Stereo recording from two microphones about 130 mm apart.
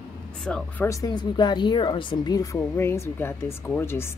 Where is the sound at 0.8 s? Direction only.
30° left (ahead or behind).